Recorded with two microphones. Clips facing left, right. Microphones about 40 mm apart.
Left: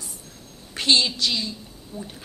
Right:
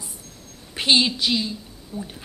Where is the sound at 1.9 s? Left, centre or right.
Right.